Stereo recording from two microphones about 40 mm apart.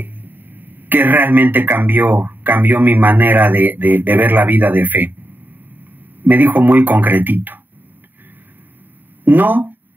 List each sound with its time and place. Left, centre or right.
0.0 s speech: right
6.2 s speech: right
9.2 s speech: right